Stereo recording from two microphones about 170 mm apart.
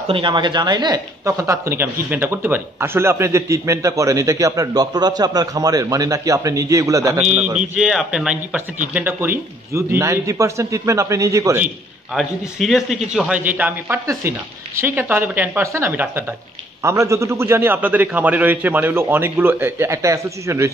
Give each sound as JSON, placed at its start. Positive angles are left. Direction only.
{"t": 0.1, "sound": "speech", "side_deg": -30}
{"t": 7.2, "sound": "a man's voice", "side_deg": -5}
{"t": 12.1, "sound": "a man's voice", "side_deg": 0}